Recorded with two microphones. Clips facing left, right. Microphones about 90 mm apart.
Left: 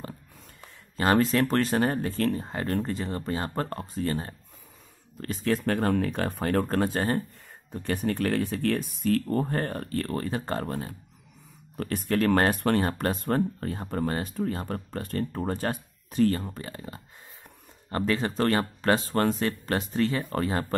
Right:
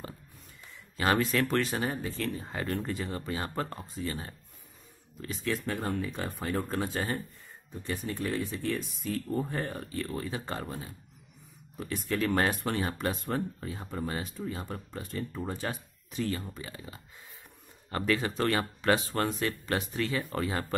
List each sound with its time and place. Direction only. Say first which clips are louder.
0.9 s speech: left 4 dB; 35° left (ahead or behind)
2.8 s speech: left 4 dB; 30° left (ahead or behind)
3.7 s speech: left 7 dB; 50° left (ahead or behind)
5.7 s speech: left 7 dB; 65° left (ahead or behind); by 7.2 s 50° left (ahead or behind)
7.7 s speech: left 7 dB; 60° left (ahead or behind); by 20.6 s 40° left (ahead or behind)